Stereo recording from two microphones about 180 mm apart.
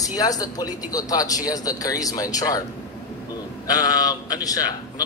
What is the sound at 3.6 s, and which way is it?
Speech, 20° left (ahead or behind).